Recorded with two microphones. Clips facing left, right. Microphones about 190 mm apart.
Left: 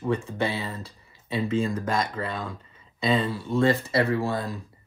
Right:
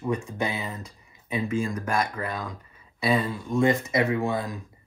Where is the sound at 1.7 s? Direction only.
25° left (ahead or behind).